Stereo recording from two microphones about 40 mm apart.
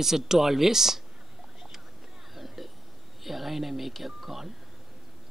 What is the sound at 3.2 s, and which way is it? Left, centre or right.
Speech, centre.